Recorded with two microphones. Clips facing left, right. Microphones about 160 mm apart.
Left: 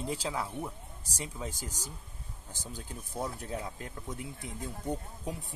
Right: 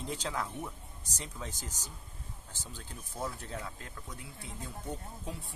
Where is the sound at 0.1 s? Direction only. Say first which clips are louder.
Even; 10° left (ahead or behind).